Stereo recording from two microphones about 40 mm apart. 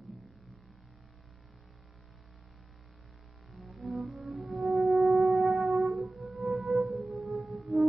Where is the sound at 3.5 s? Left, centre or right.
Centre.